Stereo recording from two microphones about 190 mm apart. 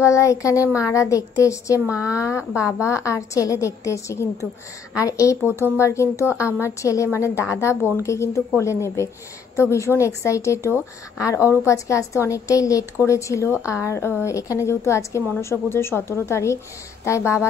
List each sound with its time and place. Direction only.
0.0 s speech: 15° left (ahead or behind)